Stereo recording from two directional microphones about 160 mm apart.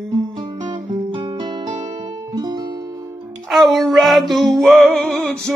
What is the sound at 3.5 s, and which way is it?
Music, centre (ahead or behind).